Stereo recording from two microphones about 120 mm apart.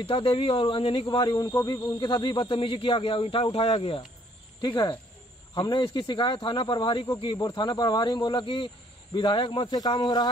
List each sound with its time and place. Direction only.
0.0 s speech: 50° left (ahead or behind)
4.6 s speech: 40° left (ahead or behind)